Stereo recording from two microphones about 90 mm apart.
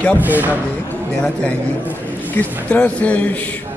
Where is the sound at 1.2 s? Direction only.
15° left (ahead or behind).